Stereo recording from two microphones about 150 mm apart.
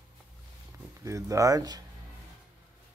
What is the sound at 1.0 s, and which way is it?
Speech, 20° right (ahead or behind).